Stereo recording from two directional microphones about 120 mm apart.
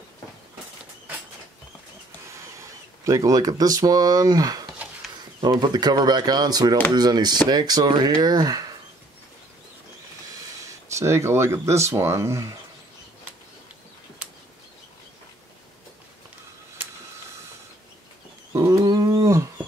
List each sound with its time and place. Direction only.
2.2 s a sound: 25° right (ahead or behind)
3.1 s speech: 30° right (ahead or behind)
10.9 s speech: 25° right (ahead or behind)
18.5 s dog: 25° right (ahead or behind)